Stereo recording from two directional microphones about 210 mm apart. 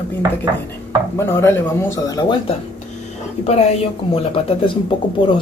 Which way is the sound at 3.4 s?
30° left (ahead or behind).